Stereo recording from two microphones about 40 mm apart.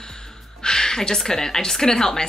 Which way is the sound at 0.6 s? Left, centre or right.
Centre.